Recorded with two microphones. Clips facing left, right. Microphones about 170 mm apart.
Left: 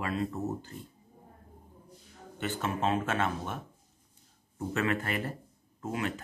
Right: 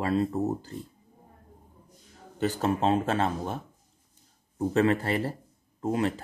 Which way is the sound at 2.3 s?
35° right (ahead or behind).